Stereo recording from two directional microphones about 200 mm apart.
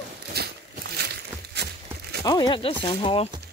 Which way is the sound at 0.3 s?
55° right (ahead or behind).